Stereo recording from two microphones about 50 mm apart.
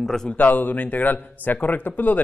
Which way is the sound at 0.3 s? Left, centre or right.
Left.